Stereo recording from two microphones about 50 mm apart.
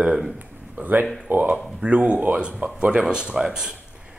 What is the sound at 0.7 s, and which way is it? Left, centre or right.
Speech, right.